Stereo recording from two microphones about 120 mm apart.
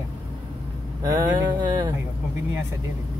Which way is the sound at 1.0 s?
35° right (ahead or behind).